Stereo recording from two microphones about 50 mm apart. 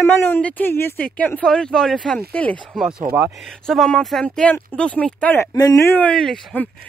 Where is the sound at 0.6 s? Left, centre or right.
Left.